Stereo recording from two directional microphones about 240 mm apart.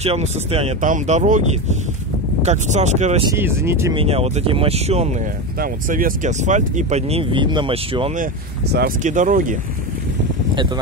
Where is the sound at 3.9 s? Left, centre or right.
Right.